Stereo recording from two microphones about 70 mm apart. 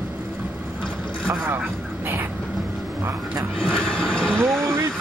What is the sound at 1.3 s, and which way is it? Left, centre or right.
Vehicle, right.